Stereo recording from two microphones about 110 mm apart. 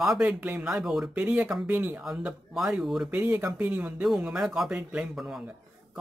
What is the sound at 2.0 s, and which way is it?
Speech, 5° right (ahead or behind).